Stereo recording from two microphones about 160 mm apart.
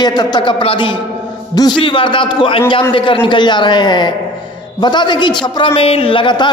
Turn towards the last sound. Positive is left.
turn(degrees=30)  # may be behind; listen again after turning